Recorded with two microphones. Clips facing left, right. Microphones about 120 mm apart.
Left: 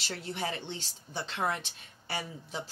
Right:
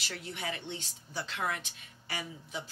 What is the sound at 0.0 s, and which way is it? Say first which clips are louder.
Speech: left 4 dB; 30° left (ahead or behind).